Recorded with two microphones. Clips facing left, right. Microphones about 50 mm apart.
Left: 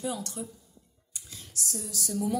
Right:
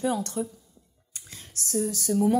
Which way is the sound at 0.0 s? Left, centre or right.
Right.